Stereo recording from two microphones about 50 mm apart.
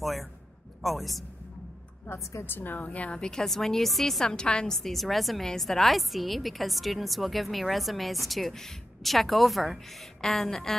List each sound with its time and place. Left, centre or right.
0.0 s a sound: centre
0.8 s a woman's voice: centre
2.4 s a woman's voice: left
3.2 s a woman's voice: centre